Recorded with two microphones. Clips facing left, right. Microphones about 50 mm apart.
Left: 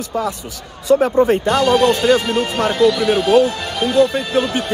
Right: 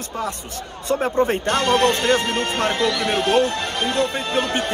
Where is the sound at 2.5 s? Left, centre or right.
Centre.